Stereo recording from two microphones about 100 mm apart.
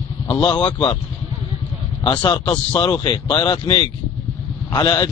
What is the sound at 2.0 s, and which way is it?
A man's voice, 50° left (ahead or behind).